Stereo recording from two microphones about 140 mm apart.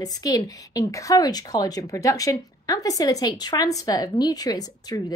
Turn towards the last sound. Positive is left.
turn(degrees=25)  # may be behind; listen again after turning